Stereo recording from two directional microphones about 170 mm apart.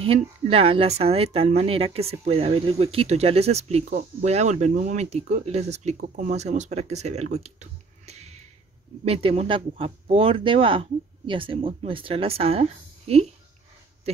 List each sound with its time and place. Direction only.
0.0 s speech: 35° right (ahead or behind)
8.1 s a sound: 40° right (ahead or behind)
9.0 s speech: 35° right (ahead or behind)